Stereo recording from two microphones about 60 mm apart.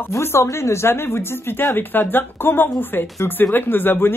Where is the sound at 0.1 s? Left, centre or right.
Left.